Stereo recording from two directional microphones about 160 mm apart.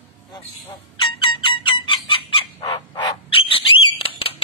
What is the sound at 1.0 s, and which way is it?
Fowl, 30° left (ahead or behind).